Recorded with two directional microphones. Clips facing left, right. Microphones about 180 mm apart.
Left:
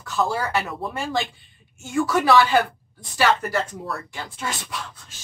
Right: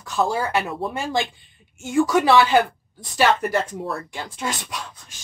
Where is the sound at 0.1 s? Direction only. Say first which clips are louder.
Right 2 dB; 15° right (ahead or behind).